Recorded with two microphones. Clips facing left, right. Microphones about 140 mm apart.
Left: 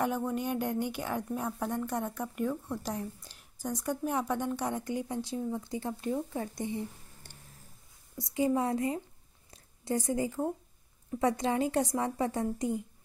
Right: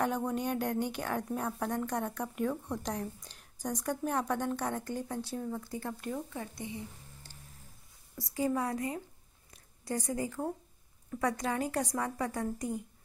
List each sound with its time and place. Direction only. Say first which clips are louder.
0.0 s speech: left 1 dB; 5° left (ahead or behind); by 6.6 s 35° left (ahead or behind)
8.2 s a woman's voice: left 3 dB; 20° left (ahead or behind)
9.5 s a sound: left 4 dB; 25° left (ahead or behind)
11.1 s a woman's voice: left 4 dB; 25° left (ahead or behind)